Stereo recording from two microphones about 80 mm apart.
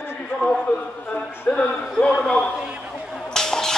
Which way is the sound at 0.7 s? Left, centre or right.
Centre.